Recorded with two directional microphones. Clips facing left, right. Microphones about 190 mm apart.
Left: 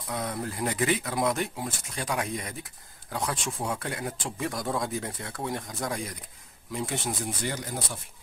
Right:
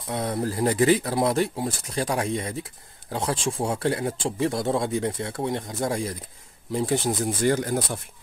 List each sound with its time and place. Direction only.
0.1 s speech: 30° right (ahead or behind); by 8.0 s 55° right (ahead or behind)